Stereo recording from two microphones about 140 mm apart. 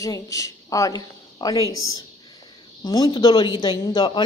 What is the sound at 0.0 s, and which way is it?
A woman's voice, 25° left (ahead or behind).